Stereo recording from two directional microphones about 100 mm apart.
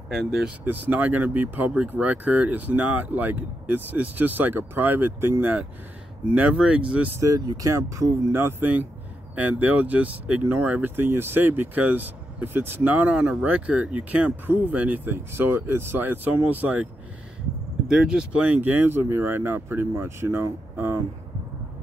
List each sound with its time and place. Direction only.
0.1 s speech: 5° right (ahead or behind)
0.7 s speech: 20° right (ahead or behind)
7.2 s speech: 35° right (ahead or behind); by 16.9 s 15° right (ahead or behind)
17.8 s speech: 5° right (ahead or behind); by 21.0 s 25° right (ahead or behind)